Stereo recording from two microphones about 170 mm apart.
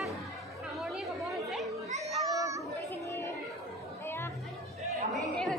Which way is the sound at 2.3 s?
20° right (ahead or behind).